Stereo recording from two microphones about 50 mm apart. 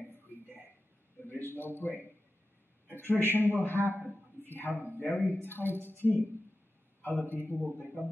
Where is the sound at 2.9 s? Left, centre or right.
Left.